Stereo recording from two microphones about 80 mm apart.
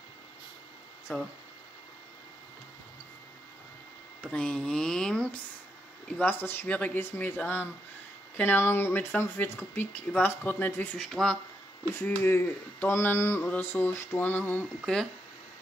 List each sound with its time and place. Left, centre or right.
1.1 s speech: left
4.2 s speech: centre
6.0 s speech: left
6.7 s speech: centre
7.0 s speech: left
11.2 s speech: centre
12.2 s speech: left